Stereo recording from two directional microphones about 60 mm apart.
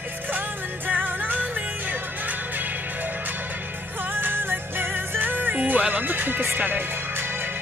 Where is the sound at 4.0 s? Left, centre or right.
Right.